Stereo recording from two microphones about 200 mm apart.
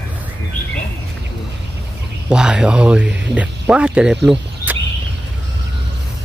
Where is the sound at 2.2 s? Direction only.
5° right (ahead or behind).